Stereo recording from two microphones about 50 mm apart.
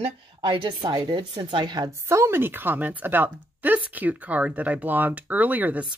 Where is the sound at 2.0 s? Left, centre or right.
Right.